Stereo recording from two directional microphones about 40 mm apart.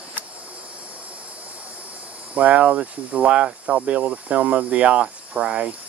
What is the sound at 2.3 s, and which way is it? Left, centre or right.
Speech, right.